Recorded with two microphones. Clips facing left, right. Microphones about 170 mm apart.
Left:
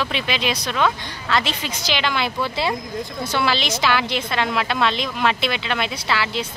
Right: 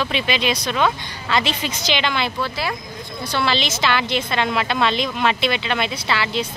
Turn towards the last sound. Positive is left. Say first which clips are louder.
# right 1 dB
turn(degrees=5)  # may be behind; listen again after turning